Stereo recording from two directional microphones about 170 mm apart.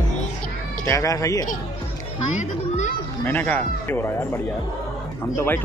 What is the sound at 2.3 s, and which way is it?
Children playing, 45° left (ahead or behind).